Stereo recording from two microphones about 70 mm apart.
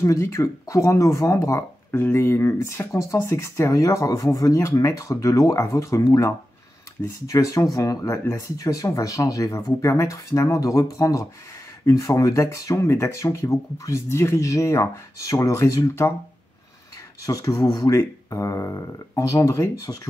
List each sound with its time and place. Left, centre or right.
0.0 s speech: left
1.9 s speech: left
2.1 s speech: left
17.3 s speech: left
18.3 s speech: left
19.9 s speech: left